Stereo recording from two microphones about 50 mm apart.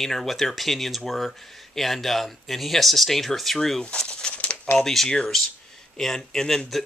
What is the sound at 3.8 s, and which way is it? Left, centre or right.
Bird, left.